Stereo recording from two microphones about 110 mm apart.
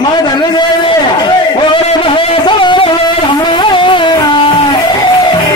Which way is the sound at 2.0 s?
55° left (ahead or behind).